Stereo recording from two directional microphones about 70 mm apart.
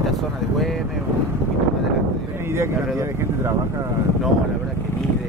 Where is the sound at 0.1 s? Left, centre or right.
Centre.